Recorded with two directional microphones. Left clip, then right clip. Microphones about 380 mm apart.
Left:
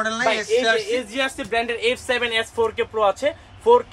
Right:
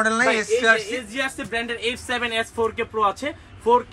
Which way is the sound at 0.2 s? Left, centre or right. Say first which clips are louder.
Even; centre.